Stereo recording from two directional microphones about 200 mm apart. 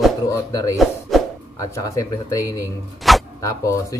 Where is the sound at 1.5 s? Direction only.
15° left (ahead or behind).